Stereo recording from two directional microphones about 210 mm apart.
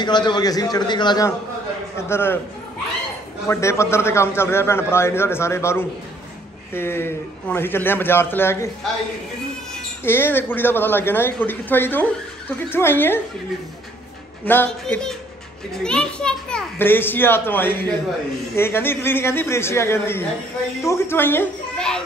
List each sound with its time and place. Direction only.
0.0 s a man's voice: 20° left (ahead or behind)
3.4 s speech: 15° left (ahead or behind)
10.0 s speech: 10° left (ahead or behind)
14.4 s speech: 10° left (ahead or behind)